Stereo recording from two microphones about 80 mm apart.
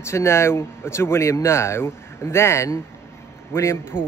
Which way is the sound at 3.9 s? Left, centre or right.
Left.